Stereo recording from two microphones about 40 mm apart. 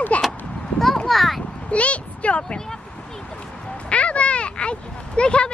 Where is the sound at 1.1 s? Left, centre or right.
Centre.